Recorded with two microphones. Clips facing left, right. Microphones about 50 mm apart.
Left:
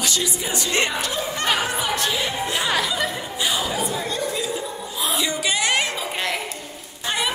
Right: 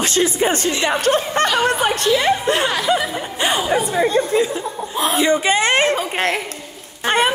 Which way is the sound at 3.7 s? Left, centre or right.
Right.